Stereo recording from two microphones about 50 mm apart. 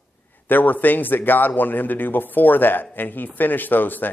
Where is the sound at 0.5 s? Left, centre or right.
Left.